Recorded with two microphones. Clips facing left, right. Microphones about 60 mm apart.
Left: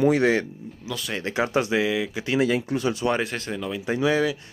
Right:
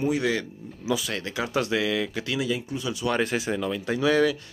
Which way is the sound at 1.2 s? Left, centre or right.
Left.